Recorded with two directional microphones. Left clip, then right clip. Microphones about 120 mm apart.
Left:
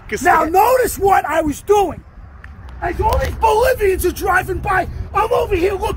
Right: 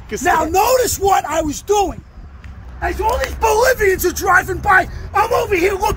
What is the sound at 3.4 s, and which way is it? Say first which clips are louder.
Speech: even; centre (ahead or behind).